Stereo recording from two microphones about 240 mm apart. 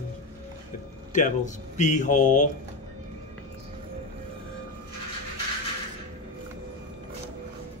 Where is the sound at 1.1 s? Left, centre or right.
Left.